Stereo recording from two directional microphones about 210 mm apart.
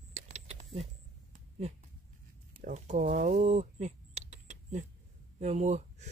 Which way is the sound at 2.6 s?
35° right (ahead or behind).